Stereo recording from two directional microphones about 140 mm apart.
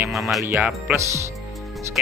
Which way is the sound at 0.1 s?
Centre (ahead or behind).